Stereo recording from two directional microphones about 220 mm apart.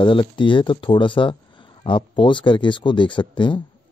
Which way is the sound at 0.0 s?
20° left (ahead or behind).